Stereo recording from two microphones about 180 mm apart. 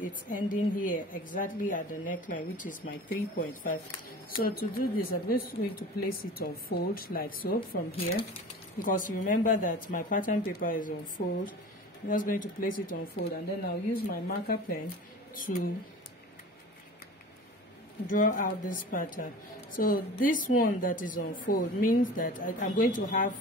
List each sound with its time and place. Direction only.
0.0 s a woman's voice: 50° left (ahead or behind)
18.0 s a woman's voice: 45° left (ahead or behind)